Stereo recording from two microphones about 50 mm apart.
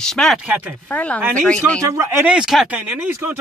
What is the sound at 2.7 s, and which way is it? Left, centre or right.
Speech, right.